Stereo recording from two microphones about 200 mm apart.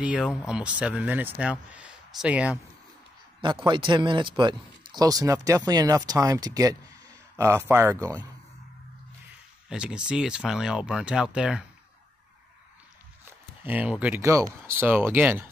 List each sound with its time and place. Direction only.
0.0 s speech: 5° right (ahead or behind)
3.3 s a man's voice: 25° right (ahead or behind)
9.7 s speech: 5° right (ahead or behind)
13.2 s speech: 10° right (ahead or behind)